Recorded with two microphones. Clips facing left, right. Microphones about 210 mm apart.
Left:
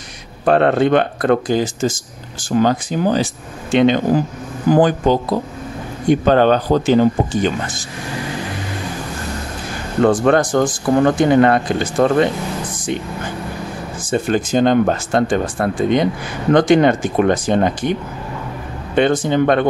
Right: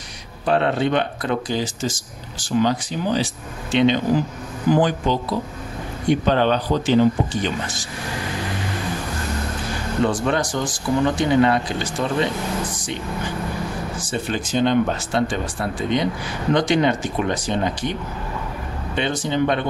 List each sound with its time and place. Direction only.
0.5 s speech: 50° left (ahead or behind)
10.0 s speech: 50° left (ahead or behind)
14.1 s speech: 45° left (ahead or behind)
18.9 s speech: 50° left (ahead or behind)